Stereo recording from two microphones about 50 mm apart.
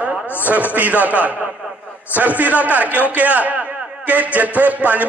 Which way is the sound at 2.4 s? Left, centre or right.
Right.